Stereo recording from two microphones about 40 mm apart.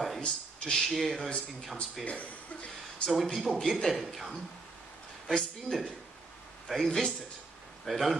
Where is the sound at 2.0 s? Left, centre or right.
Left.